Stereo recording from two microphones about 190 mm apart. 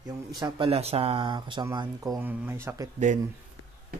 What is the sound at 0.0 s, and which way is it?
Speech, 20° right (ahead or behind).